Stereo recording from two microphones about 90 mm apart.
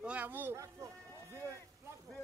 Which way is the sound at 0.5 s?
35° right (ahead or behind).